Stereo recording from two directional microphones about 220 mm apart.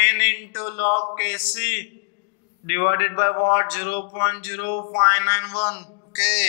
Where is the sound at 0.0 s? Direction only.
15° left (ahead or behind).